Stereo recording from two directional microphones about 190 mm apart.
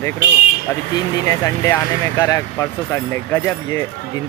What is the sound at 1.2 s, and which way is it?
Speech, 15° left (ahead or behind).